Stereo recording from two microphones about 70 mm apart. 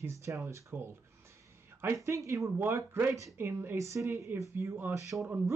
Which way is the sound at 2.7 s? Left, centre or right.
Right.